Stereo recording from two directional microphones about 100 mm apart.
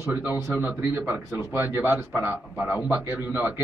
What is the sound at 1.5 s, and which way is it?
A man's voice, 25° right (ahead or behind).